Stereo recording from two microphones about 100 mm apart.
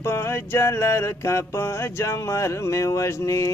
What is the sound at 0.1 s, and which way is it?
Music, 25° left (ahead or behind).